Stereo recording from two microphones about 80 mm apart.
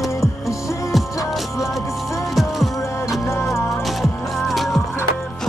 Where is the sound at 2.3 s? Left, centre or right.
Centre.